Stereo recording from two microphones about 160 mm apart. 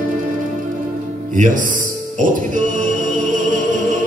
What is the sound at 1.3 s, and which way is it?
Speech, 55° right (ahead or behind).